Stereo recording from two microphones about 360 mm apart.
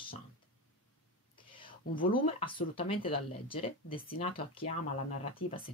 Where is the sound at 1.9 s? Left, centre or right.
Left.